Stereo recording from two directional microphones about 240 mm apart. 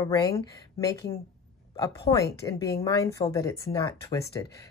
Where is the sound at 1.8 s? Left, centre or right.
Centre.